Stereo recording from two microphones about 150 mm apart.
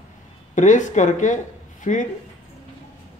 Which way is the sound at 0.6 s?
55° left (ahead or behind).